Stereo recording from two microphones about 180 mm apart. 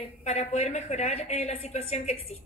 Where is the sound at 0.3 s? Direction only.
40° left (ahead or behind).